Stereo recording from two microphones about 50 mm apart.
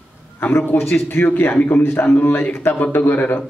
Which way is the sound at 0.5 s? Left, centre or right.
Left.